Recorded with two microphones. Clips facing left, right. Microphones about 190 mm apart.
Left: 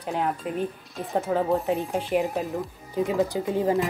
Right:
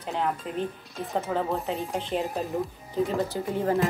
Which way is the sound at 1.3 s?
15° left (ahead or behind).